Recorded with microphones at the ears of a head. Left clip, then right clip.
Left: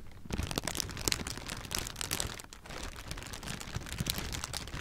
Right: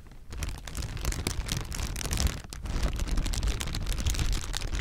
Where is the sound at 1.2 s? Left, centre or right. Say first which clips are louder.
Right 6 dB; right.